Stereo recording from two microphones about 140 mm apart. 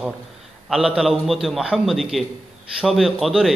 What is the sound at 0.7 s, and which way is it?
A man's voice, 5° right (ahead or behind).